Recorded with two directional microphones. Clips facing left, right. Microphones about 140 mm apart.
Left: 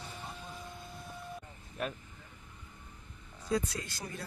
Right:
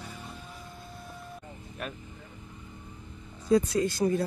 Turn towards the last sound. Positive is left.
turn(degrees=-30)  # may be behind; listen again after turning